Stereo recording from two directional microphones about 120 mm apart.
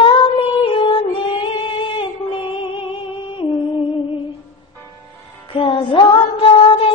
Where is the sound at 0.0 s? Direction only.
45° left (ahead or behind).